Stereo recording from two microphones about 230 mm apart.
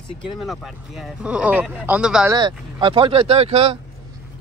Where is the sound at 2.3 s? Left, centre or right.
Centre.